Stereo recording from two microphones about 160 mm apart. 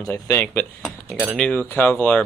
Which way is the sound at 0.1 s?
15° left (ahead or behind).